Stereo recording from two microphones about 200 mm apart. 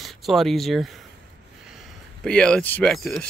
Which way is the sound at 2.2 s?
5° left (ahead or behind).